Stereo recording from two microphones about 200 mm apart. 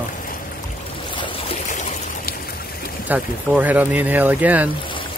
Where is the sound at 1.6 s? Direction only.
40° left (ahead or behind).